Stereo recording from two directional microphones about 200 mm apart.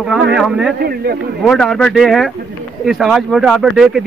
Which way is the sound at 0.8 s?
50° right (ahead or behind).